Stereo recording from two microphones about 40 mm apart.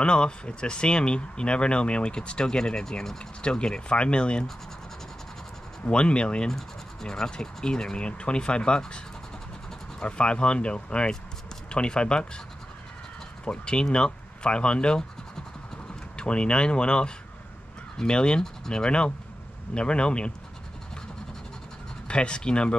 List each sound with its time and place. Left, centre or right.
0.0 s speech: left
5.9 s speech: left
6.5 s speech: centre
10.0 s speech: left
13.5 s speech: left
22.0 s speech: left